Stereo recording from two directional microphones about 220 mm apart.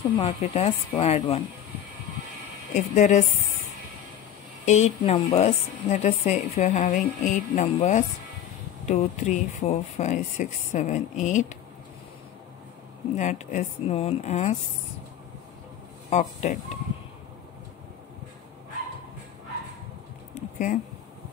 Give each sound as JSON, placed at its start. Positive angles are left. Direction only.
{"t": 0.4, "sound": "speech", "side_deg": 30}
{"t": 2.7, "sound": "a woman's voice", "side_deg": 30}
{"t": 4.6, "sound": "a woman's voice", "side_deg": 30}
{"t": 13.1, "sound": "a woman's voice", "side_deg": 35}
{"t": 16.1, "sound": "a woman's voice", "side_deg": 30}
{"t": 20.3, "sound": "a sound", "side_deg": 35}